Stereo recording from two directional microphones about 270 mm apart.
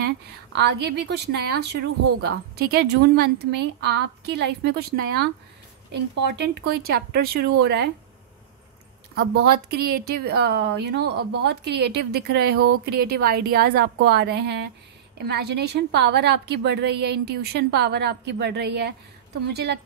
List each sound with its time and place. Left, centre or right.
0.0 s speech: right
9.4 s speech: right